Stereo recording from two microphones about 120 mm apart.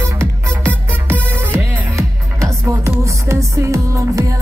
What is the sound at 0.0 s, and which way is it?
Music, 20° right (ahead or behind).